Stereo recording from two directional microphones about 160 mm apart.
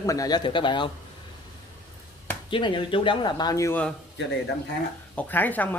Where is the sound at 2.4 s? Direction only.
30° left (ahead or behind).